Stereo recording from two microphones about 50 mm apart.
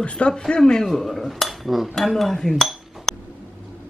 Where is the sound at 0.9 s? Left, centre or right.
Centre.